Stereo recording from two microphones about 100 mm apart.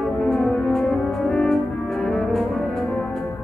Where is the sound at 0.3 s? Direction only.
5° left (ahead or behind).